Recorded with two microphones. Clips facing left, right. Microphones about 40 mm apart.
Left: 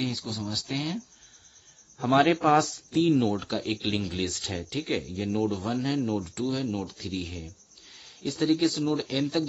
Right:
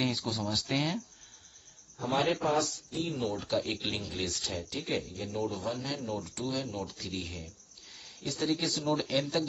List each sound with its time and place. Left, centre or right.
0.0 s speech: centre
2.0 s speech: left
2.2 s speech: left
3.0 s speech: left
3.5 s speech: centre
3.9 s speech: left
4.7 s speech: left
5.9 s speech: centre
6.4 s speech: centre